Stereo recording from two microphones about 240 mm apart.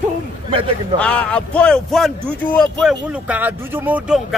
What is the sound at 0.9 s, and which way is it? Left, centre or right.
Speech, centre.